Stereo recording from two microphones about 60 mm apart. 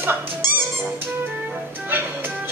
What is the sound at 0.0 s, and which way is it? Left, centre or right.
Music, right.